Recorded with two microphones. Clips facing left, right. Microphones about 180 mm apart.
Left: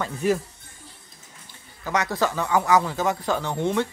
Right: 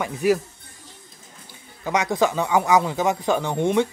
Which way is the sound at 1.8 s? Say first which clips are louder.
Right 3 dB; 20° right (ahead or behind).